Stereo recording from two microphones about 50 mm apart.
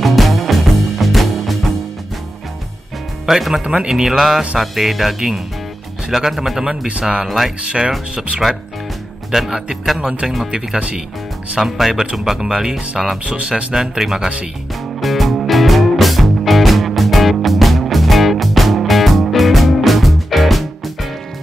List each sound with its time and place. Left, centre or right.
0.0 s music: centre
3.3 s speech: centre
3.6 s speech: centre
3.9 s speech: centre
6.9 s speech: centre
7.2 s speech: centre
9.3 s speech: centre
10.2 s speech: centre
10.5 s speech: centre
11.6 s speech: centre
13.7 s speech: centre
15.0 s music: centre